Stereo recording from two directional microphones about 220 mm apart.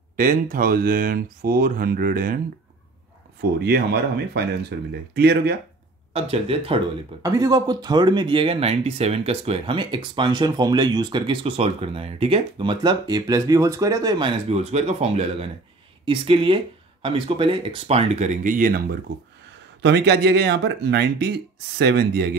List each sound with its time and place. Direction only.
0.1 s speech: 40° right (ahead or behind)
3.5 s speech: 50° right (ahead or behind)
6.1 s speech: 25° right (ahead or behind)
19.8 s speech: 50° right (ahead or behind)